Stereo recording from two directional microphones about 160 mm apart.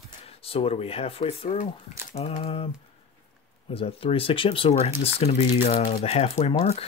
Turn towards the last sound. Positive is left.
turn(degrees=40)  # may be behind; listen again after turning